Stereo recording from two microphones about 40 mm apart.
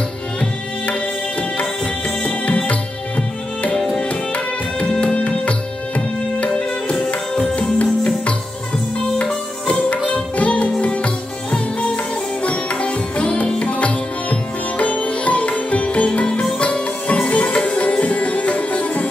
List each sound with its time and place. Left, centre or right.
1.6 s music: left
4.1 s music: left
9.7 s music: left